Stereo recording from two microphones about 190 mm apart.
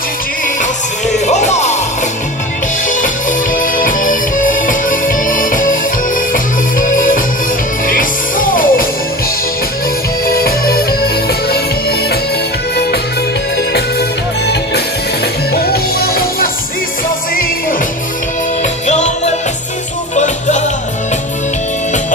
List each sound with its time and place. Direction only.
0.6 s music: 40° left (ahead or behind)
2.9 s music: 45° left (ahead or behind)
10.2 s music: 50° left (ahead or behind)
13.6 s music: 60° left (ahead or behind)
18.6 s music: 40° left (ahead or behind)